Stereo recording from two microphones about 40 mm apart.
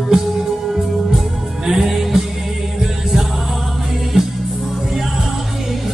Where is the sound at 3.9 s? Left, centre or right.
Centre.